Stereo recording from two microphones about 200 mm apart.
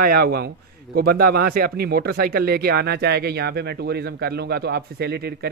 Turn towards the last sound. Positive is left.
turn(degrees=-55)  # may be behind; listen again after turning